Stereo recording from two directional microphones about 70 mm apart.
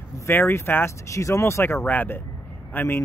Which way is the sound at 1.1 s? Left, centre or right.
Left.